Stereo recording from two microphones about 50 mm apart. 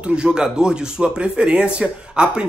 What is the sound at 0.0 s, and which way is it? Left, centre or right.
Speech, centre.